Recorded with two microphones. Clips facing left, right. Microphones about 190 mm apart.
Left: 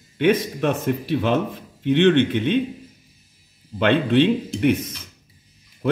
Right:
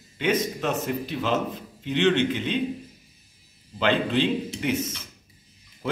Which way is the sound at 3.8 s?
60° left (ahead or behind).